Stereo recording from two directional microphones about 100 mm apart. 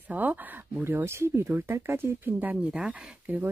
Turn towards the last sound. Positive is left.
turn(degrees=-15)  # may be behind; listen again after turning